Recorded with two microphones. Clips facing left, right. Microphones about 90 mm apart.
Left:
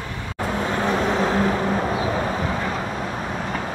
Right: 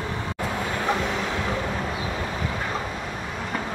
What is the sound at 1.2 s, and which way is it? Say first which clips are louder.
Vehicle: left 7 dB; 40° left (ahead or behind).